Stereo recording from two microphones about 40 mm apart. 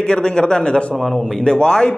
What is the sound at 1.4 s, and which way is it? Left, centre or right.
Speech, left.